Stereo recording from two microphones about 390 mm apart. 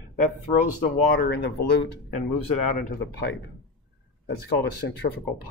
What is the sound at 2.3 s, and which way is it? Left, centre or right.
Speech, left.